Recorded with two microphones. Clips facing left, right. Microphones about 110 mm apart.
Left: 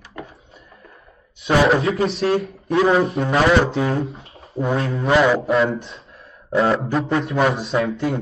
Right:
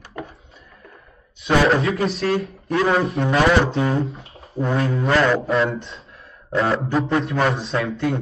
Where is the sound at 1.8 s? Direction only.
30° left (ahead or behind).